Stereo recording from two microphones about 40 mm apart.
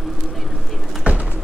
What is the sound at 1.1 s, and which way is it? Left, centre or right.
Bird, right.